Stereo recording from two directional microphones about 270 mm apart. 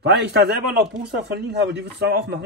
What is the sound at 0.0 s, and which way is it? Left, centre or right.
Speech, right.